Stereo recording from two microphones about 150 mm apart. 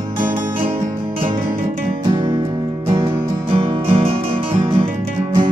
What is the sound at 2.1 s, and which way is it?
Music, 25° right (ahead or behind).